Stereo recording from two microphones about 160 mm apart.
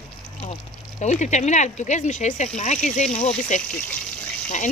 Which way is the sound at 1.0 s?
45° left (ahead or behind).